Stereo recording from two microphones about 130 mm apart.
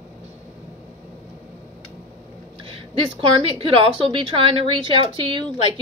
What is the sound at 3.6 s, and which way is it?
Speech, 45° right (ahead or behind).